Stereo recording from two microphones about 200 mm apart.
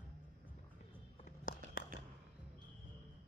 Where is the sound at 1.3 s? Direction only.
45° left (ahead or behind).